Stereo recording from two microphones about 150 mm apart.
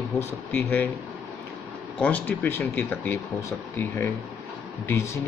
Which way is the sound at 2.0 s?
10° left (ahead or behind).